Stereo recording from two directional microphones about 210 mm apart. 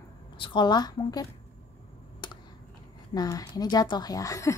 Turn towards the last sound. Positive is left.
turn(degrees=15)  # may be behind; listen again after turning